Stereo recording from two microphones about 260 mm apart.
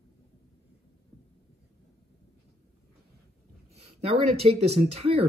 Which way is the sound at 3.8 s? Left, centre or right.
Right.